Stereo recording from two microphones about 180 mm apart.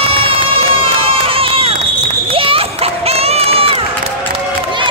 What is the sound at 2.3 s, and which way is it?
Crowd, 30° right (ahead or behind).